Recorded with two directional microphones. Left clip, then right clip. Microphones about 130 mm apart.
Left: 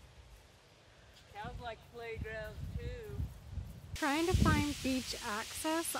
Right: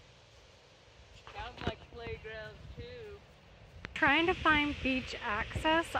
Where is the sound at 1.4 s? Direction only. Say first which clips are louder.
Right 4 dB; 70° right (ahead or behind).